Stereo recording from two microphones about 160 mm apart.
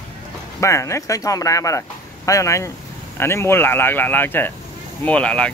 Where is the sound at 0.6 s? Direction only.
20° left (ahead or behind).